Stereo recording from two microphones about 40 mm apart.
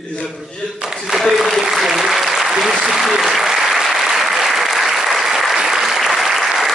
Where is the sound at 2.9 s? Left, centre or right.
Centre.